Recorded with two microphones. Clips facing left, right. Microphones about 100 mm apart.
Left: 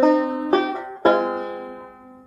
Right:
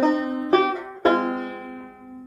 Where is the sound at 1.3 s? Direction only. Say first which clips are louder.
Left 2 dB; 25° left (ahead or behind).